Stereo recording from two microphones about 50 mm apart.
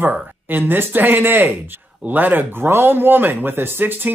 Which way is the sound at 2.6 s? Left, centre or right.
Right.